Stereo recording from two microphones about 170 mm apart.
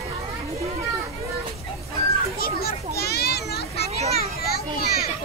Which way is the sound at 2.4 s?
65° left (ahead or behind).